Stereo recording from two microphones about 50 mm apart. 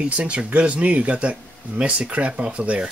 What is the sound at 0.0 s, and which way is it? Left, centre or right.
Speech, right.